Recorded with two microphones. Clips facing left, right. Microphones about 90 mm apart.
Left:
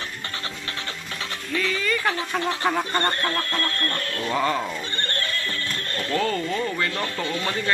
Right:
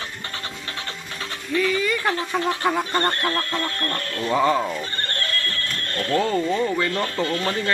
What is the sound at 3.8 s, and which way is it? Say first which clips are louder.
Speech: right 1 dB; 30° right (ahead or behind).